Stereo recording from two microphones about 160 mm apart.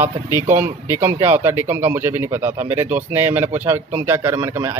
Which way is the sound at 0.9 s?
15° right (ahead or behind).